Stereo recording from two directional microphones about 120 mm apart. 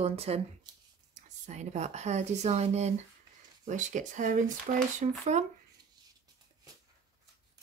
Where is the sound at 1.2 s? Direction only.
80° right.